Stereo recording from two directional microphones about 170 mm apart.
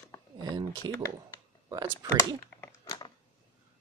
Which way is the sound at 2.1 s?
15° left (ahead or behind).